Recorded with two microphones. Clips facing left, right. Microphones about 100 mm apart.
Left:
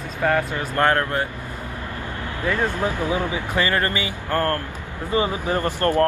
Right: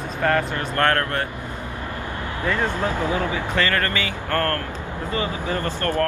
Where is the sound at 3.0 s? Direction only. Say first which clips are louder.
Even; 20° left (ahead or behind).